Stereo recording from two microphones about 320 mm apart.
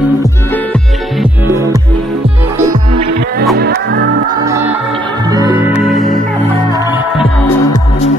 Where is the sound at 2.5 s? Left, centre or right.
Centre.